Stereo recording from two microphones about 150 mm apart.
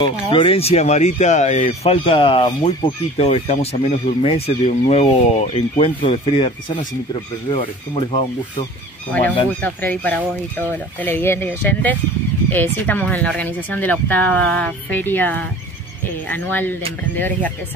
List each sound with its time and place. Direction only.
0.0 s speech: 35° left (ahead or behind)
9.6 s speech: 10° left (ahead or behind)